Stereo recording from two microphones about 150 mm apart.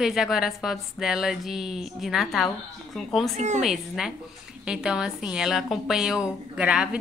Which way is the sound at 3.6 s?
Centre (ahead or behind).